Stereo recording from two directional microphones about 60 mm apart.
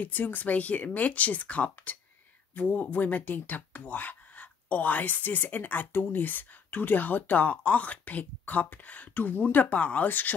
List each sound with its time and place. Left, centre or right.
0.0 s speech: left